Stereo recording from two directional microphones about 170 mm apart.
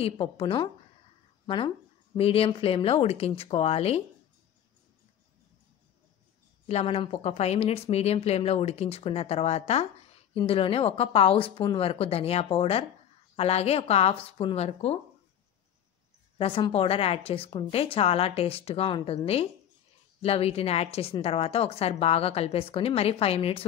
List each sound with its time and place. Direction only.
0.0 s a woman's voice: 35° left (ahead or behind)
6.7 s a woman's voice: 35° left (ahead or behind)
16.3 s a woman's voice: 35° left (ahead or behind)